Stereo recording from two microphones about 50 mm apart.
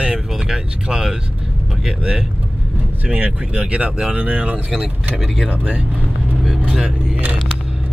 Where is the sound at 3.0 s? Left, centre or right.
Right.